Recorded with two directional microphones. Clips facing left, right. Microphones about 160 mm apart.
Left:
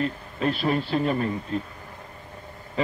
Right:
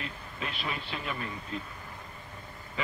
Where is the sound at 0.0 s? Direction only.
40° left (ahead or behind).